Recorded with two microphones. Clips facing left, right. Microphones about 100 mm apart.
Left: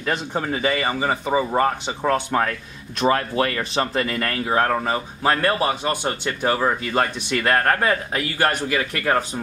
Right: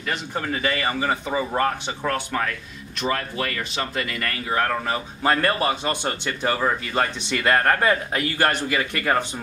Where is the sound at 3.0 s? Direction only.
35° left (ahead or behind); by 5.3 s 20° left (ahead or behind).